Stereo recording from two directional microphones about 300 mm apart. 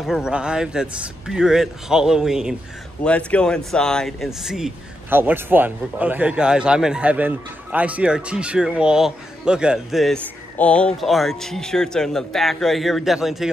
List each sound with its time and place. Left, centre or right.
0.0 s speech: centre